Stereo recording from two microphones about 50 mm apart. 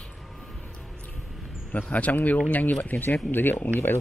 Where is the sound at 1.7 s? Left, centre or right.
Left.